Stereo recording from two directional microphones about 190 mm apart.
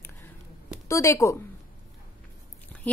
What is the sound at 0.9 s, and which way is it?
Speech, 15° left (ahead or behind).